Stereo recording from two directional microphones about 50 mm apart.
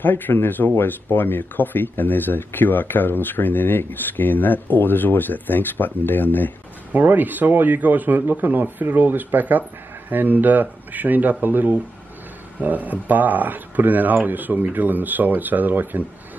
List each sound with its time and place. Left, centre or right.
0.0 s speech: left
6.9 s speech: right